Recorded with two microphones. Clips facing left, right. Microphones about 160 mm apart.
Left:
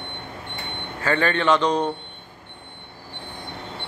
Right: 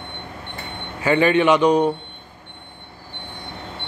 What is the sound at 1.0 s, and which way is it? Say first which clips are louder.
Speech: right 6 dB; 15° right (ahead or behind).